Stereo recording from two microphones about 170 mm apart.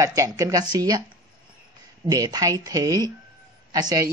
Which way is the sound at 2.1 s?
20° right (ahead or behind).